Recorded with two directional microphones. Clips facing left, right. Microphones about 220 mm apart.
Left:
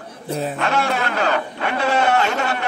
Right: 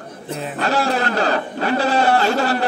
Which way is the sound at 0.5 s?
35° right (ahead or behind).